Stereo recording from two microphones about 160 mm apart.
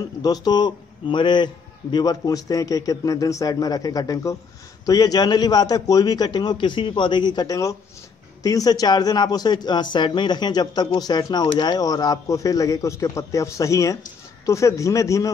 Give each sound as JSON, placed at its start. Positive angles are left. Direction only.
{"t": 0.2, "sound": "speech", "side_deg": 25}